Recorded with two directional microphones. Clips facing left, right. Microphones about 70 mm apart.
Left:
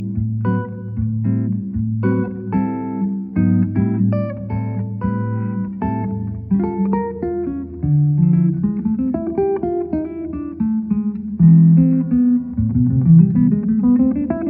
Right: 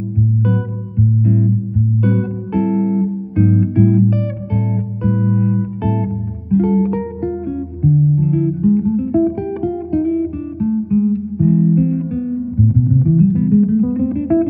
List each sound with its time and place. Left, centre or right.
0.4 s music: left
9.3 s guitar: left